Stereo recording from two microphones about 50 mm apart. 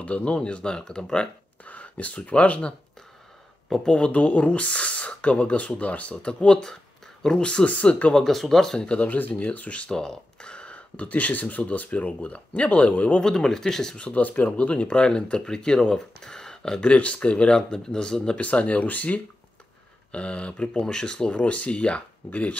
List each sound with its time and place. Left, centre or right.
0.0 s speech: left
1.7 s speech: left
3.8 s speech: left
8.1 s speech: centre
8.8 s speech: left
13.2 s speech: centre
13.9 s speech: left
16.9 s speech: left
18.4 s speech: left